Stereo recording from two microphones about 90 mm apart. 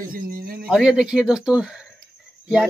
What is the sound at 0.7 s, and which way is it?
Speech, 5° right (ahead or behind).